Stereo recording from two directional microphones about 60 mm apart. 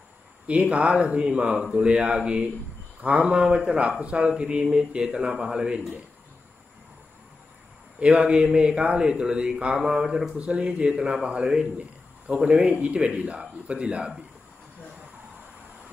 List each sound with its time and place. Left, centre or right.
0.5 s speech: right
3.3 s speech: centre
8.0 s speech: centre
11.0 s speech: centre
11.2 s a man's voice: centre